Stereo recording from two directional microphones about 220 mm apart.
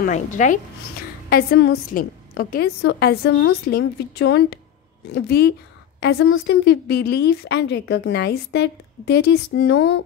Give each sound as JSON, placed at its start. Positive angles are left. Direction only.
{"t": 0.0, "sound": "speech", "side_deg": 35}
{"t": 1.3, "sound": "a woman's voice", "side_deg": 45}